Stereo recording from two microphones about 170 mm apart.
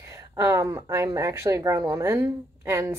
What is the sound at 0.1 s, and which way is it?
A woman's voice, 20° right (ahead or behind).